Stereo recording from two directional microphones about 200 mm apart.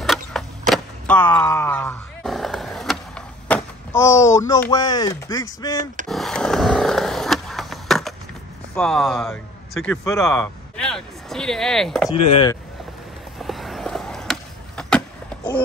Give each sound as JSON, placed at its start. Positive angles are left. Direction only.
{"t": 0.0, "sound": "vehicle", "side_deg": 0}
{"t": 6.0, "sound": "skateboard", "side_deg": 0}
{"t": 8.7, "sound": "speech", "side_deg": 5}
{"t": 13.4, "sound": "vehicle", "side_deg": 0}